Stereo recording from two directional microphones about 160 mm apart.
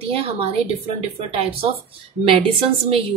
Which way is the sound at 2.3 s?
35° right (ahead or behind).